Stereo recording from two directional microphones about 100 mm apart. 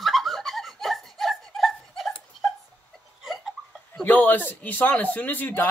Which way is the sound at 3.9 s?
15° left (ahead or behind).